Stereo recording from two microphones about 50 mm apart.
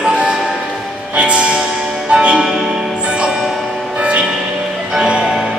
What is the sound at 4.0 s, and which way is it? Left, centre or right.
Music, right.